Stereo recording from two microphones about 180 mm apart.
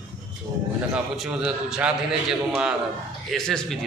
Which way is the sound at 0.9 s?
5° right (ahead or behind).